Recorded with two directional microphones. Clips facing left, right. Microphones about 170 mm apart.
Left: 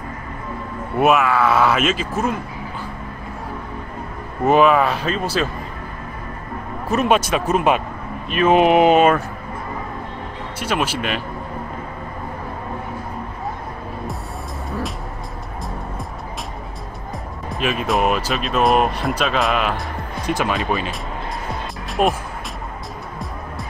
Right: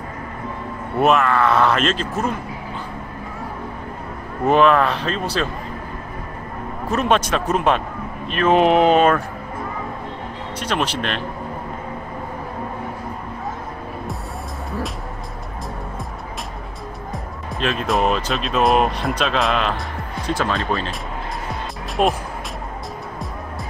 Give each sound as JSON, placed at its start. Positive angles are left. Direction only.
{"t": 0.9, "sound": "speech", "side_deg": 5}
{"t": 4.5, "sound": "speech", "side_deg": 5}
{"t": 6.9, "sound": "speech", "side_deg": 5}
{"t": 10.6, "sound": "speech", "side_deg": 5}
{"t": 17.5, "sound": "speech", "side_deg": 5}
{"t": 20.2, "sound": "speech", "side_deg": 15}
{"t": 22.0, "sound": "speech", "side_deg": 5}